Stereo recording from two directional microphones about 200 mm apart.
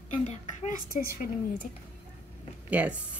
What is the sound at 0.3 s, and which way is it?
Speech, 40° left (ahead or behind).